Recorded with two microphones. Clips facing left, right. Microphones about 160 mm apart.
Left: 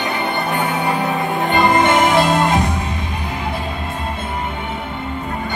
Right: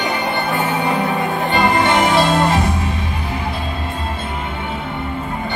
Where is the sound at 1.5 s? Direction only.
20° left (ahead or behind).